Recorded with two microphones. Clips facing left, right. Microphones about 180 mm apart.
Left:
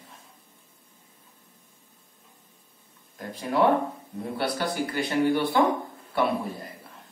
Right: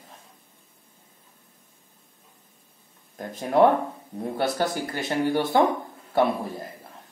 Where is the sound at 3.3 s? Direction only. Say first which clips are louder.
Right 3 dB; 45° right (ahead or behind).